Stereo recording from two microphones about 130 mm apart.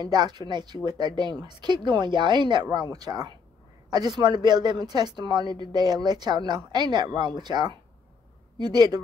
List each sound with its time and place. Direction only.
0.0 s speech: 35° right (ahead or behind)